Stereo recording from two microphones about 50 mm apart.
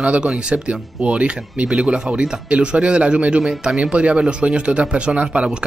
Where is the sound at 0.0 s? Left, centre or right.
Right.